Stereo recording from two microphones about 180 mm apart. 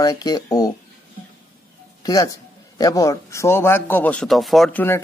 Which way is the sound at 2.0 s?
20° left (ahead or behind).